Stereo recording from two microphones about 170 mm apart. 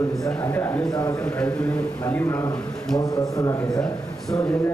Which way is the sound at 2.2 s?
20° left (ahead or behind).